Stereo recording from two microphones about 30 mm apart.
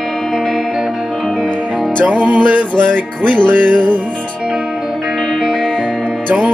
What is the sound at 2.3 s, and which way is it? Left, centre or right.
Music, right.